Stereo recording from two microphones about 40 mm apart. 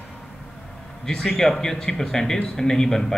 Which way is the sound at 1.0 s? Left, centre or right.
Centre.